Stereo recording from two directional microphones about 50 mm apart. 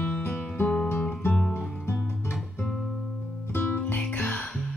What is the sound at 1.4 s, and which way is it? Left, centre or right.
Music, centre.